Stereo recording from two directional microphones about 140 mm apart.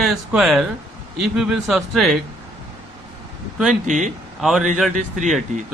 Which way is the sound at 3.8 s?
60° right (ahead or behind).